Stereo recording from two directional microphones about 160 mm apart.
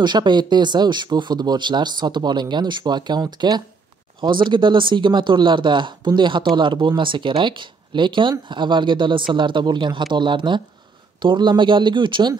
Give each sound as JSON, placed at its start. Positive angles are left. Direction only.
{"t": 0.0, "sound": "speech", "side_deg": -30}